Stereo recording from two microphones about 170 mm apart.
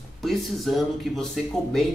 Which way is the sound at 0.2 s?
Centre (ahead or behind).